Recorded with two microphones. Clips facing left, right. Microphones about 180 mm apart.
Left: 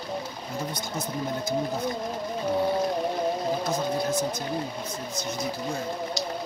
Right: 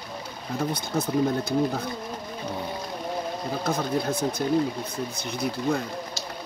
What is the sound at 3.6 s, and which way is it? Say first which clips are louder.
Speech: right 1 dB; 55° right (ahead or behind).